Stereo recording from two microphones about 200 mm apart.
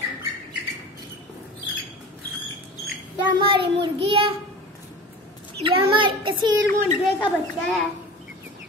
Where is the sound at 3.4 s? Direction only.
25° right (ahead or behind).